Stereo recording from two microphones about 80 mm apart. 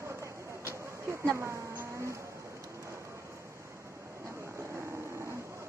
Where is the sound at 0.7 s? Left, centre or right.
Right.